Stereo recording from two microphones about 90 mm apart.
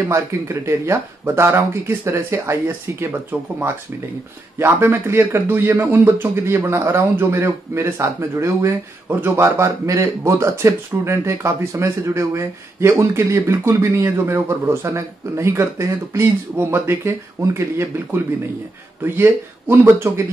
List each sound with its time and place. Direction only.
0.0 s a man's voice: 30° right (ahead or behind)